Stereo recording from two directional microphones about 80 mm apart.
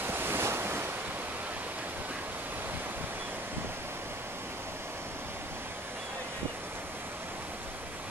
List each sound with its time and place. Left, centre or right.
0.0 s waves: right